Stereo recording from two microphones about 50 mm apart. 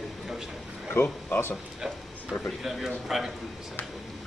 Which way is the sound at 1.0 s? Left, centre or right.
Left.